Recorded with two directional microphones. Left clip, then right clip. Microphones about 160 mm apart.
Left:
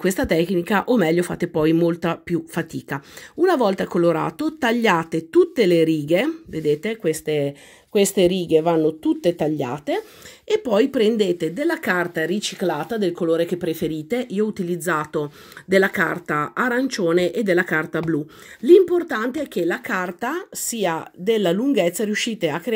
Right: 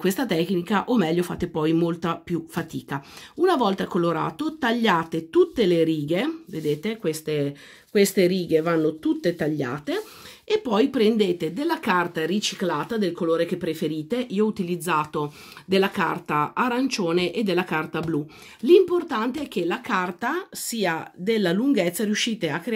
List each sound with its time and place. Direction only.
0.0 s speech: 25° left (ahead or behind)